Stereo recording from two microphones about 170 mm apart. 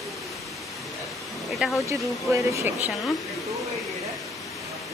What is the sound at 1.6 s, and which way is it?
Speech, centre (ahead or behind).